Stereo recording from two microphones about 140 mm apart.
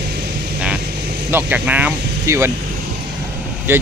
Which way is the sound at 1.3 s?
10° right (ahead or behind).